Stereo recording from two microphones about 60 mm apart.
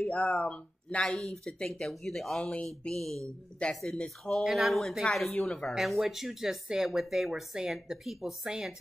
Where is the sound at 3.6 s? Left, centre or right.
Centre.